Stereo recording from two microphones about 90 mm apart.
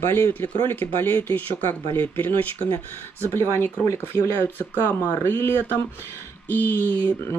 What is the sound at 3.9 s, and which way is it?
Speech, 25° left (ahead or behind).